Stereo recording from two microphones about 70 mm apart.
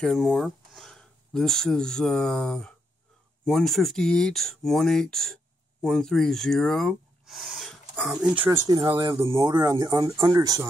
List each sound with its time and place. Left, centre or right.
0.0 s speech: centre
8.6 s speech: right
9.2 s speech: right